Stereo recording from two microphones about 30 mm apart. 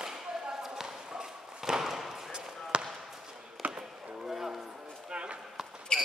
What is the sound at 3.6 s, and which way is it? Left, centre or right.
Basketball bounce, right.